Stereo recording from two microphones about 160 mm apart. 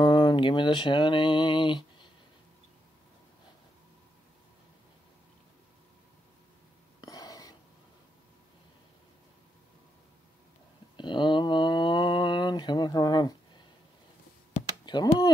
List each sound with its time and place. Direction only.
0.0 s a sound: 30° left (ahead or behind)
7.0 s filing: 20° left (ahead or behind)
11.0 s mantra: 30° left (ahead or behind)
14.9 s speech: 25° left (ahead or behind)